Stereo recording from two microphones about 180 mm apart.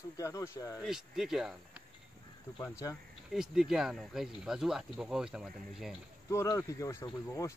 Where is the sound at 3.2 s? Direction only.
5° right (ahead or behind).